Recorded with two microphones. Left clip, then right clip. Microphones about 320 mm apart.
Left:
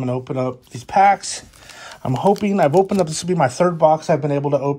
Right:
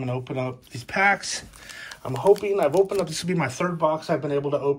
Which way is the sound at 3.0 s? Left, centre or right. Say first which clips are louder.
Left 8 dB; centre.